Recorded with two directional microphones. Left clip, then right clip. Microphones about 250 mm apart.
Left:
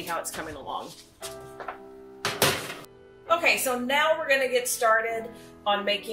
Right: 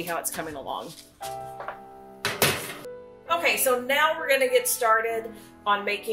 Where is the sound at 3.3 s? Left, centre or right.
Right.